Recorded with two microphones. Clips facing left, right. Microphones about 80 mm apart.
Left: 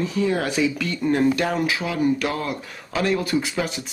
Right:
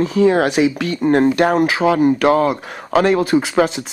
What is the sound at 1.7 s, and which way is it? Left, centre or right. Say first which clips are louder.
Speech: right 8 dB; right.